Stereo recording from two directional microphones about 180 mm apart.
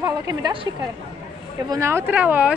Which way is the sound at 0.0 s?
20° right (ahead or behind).